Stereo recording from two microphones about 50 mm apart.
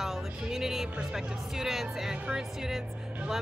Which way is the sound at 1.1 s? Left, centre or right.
Centre.